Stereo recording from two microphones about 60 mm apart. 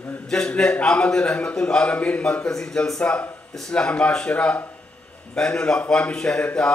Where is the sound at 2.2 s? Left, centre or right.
Centre.